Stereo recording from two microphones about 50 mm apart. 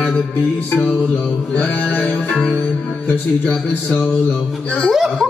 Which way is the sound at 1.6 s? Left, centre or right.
Left.